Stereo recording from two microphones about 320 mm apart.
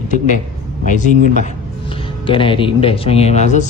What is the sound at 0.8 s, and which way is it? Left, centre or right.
Speech, left.